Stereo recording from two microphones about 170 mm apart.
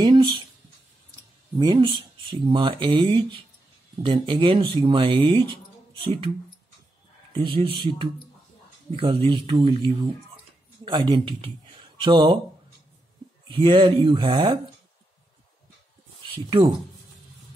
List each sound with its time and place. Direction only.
0.0 s a sound: 25° right (ahead or behind)
1.6 s speech: 25° right (ahead or behind)
7.3 s speech: 30° right (ahead or behind)
10.9 s speech: 30° right (ahead or behind)
13.5 s speech: 30° right (ahead or behind)
16.4 s speech: 30° right (ahead or behind)